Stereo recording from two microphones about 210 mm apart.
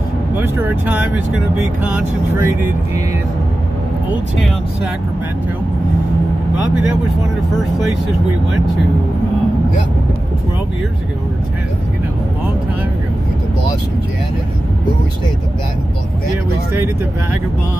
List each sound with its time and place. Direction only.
0.4 s speech: 10° right (ahead or behind)